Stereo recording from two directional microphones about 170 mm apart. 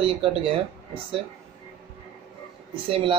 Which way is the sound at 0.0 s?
30° right (ahead or behind).